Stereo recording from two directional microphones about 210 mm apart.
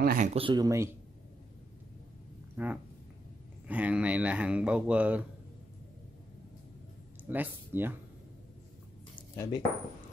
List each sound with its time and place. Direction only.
0.0 s speech: 40° right (ahead or behind)
0.4 s speech: 20° right (ahead or behind)
2.5 s speech: 10° right (ahead or behind)
7.2 s speech: 10° right (ahead or behind)
9.3 s speech: 15° left (ahead or behind)